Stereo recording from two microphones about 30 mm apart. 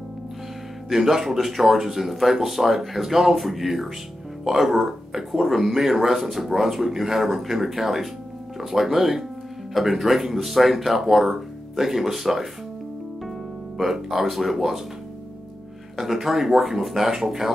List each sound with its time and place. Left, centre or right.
0.9 s speech: centre
14.1 s speech: centre
16.0 s speech: centre